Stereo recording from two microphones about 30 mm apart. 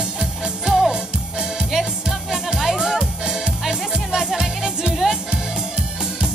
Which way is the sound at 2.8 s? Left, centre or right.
Right.